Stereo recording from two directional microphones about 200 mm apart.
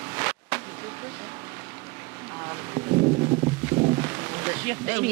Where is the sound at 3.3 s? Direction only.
25° right (ahead or behind).